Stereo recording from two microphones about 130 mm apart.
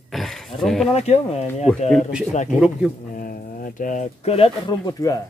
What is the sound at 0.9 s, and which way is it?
Speech, 55° left (ahead or behind).